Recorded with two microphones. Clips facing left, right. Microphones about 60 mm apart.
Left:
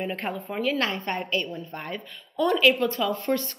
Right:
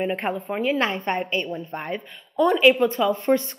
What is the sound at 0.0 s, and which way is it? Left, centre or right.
A woman's voice, right.